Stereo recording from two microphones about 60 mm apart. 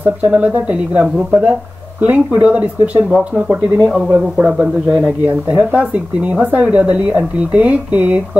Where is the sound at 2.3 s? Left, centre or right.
Right.